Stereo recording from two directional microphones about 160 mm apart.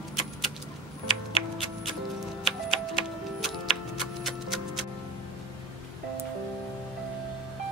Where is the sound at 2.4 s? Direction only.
Centre (ahead or behind).